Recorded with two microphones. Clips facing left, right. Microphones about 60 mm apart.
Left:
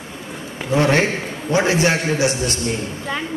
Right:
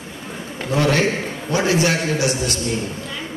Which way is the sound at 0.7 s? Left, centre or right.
Left.